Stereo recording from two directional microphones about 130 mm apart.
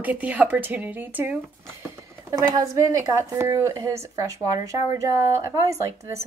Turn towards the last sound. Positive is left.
turn(degrees=-25)  # may be behind; listen again after turning